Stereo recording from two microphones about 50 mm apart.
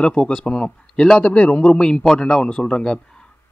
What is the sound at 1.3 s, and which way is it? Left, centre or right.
Speech, left.